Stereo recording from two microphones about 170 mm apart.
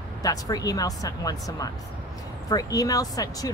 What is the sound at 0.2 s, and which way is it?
Speech, 20° left (ahead or behind).